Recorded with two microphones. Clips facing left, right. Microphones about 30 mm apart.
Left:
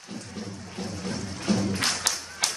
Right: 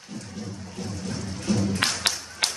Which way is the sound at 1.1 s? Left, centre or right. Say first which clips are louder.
Even; centre.